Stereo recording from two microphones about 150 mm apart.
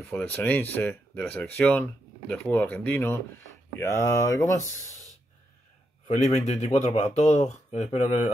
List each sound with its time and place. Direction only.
0.0 s speech: 10° left (ahead or behind)
6.0 s speech: 50° left (ahead or behind)